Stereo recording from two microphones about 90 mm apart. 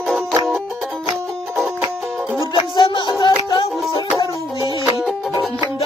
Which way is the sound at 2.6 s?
65° left (ahead or behind).